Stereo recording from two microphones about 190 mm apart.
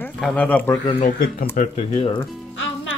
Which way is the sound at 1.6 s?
45° left (ahead or behind).